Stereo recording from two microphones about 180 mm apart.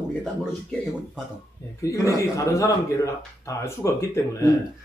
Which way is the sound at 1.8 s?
15° left (ahead or behind).